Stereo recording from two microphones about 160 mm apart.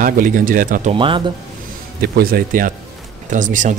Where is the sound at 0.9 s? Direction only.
30° right (ahead or behind).